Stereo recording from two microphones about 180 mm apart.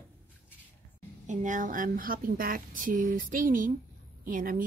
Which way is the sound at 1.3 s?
45° right (ahead or behind).